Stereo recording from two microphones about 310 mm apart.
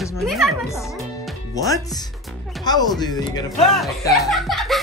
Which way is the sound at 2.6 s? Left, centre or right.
Centre.